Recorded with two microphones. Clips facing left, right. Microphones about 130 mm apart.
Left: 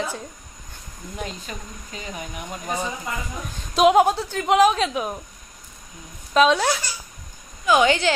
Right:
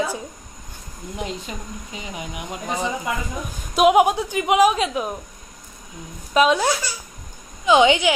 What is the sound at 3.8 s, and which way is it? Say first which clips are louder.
A woman's voice: right 1 dB; 5° right (ahead or behind).